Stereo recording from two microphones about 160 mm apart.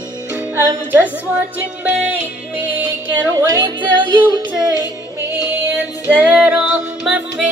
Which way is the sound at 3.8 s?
30° right (ahead or behind).